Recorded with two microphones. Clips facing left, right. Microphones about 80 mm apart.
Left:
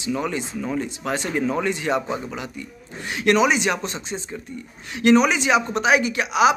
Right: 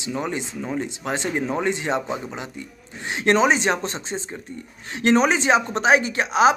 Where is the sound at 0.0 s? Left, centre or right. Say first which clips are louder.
Left 2 dB; right.